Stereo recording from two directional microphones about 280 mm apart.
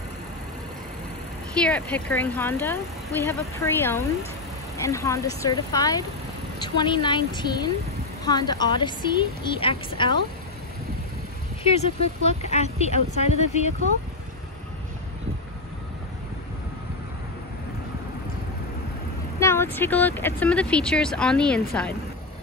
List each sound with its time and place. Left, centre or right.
1.6 s a woman's voice: centre
11.6 s speech: left
19.4 s speech: centre